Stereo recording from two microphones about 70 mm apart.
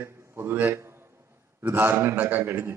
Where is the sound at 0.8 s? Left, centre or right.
Right.